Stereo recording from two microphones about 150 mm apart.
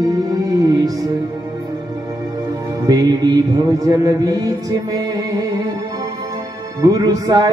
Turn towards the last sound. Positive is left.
turn(degrees=-25)  # may be behind; listen again after turning